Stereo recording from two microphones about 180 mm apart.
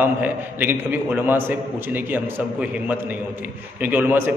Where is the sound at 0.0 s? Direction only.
10° right (ahead or behind).